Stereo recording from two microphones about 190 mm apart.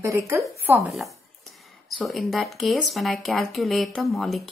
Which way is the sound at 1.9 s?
Centre (ahead or behind).